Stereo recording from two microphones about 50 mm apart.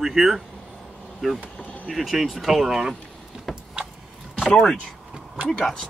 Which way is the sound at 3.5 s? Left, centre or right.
Centre.